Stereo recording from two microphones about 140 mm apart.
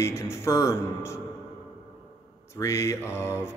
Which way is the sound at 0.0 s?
20° left (ahead or behind).